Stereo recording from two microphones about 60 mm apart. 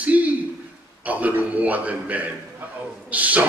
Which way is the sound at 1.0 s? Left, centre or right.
Right.